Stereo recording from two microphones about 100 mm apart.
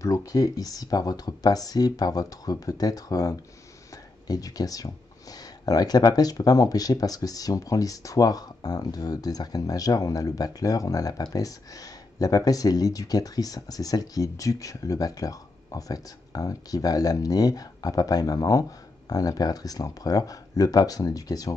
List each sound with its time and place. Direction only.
0.0 s speech: 35° left (ahead or behind)